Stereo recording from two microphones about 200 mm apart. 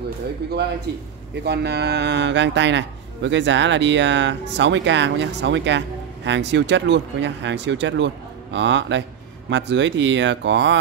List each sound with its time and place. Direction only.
0.5 s a man's voice: 55° right (ahead or behind)